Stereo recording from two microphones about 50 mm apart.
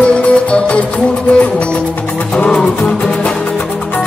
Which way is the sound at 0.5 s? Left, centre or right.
Left.